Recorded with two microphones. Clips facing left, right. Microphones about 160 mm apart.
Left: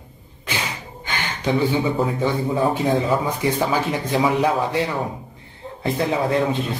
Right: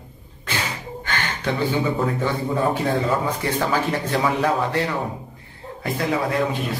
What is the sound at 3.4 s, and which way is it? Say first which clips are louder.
Speech: left 2 dB; 15° left (ahead or behind).